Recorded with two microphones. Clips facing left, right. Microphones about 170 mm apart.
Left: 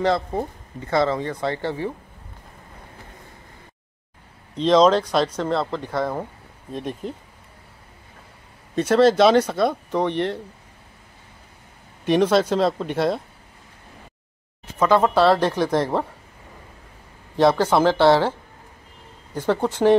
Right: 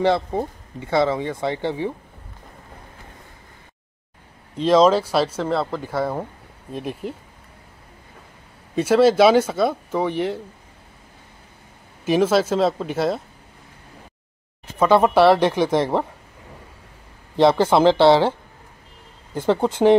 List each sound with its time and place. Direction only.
0.3 s speech: 10° right (ahead or behind)
4.6 s speech: 5° right (ahead or behind)
8.7 s speech: 5° right (ahead or behind)
12.0 s speech: 5° right (ahead or behind)
14.8 s speech: 15° right (ahead or behind)
17.4 s speech: 20° right (ahead or behind)
19.3 s speech: 20° right (ahead or behind)